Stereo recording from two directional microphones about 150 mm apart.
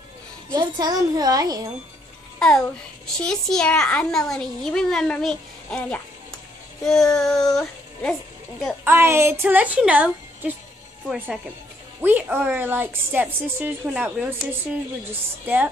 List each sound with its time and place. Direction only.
0.5 s a child's voice: 25° right (ahead or behind)
2.3 s music: 5° left (ahead or behind)
3.2 s a child's voice: 5° left (ahead or behind)
8.8 s a woman's voice: 15° right (ahead or behind)